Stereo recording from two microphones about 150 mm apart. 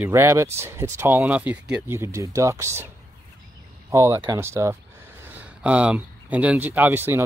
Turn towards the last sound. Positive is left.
turn(degrees=-15)  # may be behind; listen again after turning